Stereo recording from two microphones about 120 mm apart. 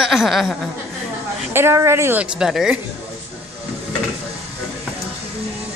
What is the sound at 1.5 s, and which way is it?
Speech, 20° right (ahead or behind).